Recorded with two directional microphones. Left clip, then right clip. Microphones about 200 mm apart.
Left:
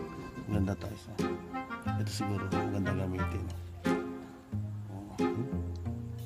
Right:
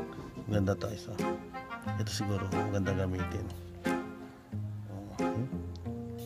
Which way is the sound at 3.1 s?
Centre (ahead or behind).